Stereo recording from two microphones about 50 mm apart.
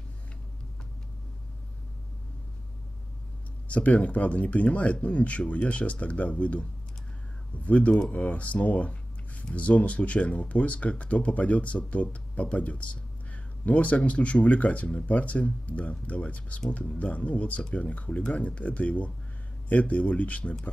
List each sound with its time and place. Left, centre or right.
3.6 s speech: left